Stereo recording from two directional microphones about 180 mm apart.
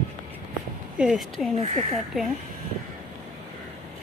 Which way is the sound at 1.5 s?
40° right (ahead or behind).